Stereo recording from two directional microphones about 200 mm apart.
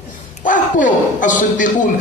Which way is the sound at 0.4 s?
40° left (ahead or behind).